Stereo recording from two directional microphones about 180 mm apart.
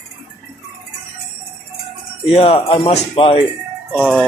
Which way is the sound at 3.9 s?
Centre (ahead or behind).